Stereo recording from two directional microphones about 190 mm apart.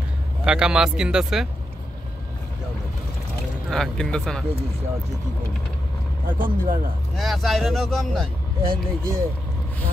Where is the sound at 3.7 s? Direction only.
5° left (ahead or behind).